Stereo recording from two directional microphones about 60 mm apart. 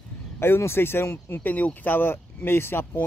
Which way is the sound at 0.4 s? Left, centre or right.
Left.